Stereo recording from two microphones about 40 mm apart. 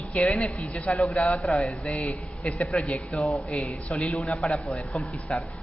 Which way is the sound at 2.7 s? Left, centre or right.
Left.